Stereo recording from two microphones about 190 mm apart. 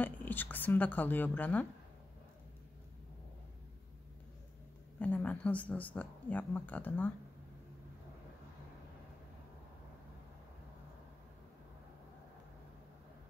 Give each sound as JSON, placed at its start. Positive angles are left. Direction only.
{"t": 0.0, "sound": "speech", "side_deg": 10}
{"t": 4.9, "sound": "speech", "side_deg": 10}